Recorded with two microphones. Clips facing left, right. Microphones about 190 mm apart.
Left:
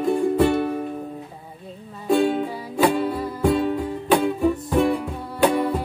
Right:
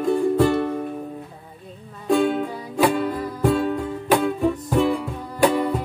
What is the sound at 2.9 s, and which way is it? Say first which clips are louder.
Music: even; 5° left (ahead or behind).